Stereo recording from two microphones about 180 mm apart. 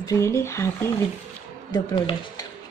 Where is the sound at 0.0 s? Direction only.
15° left (ahead or behind).